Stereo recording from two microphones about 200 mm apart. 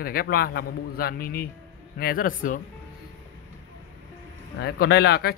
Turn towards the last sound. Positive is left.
turn(degrees=55)  # may be behind; listen again after turning